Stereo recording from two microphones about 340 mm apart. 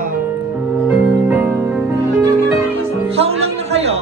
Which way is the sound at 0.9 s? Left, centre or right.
Centre.